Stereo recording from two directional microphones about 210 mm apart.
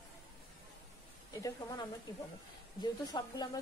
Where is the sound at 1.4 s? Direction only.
20° left (ahead or behind).